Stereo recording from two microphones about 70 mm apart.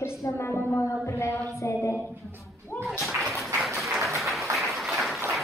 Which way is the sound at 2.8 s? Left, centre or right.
Centre.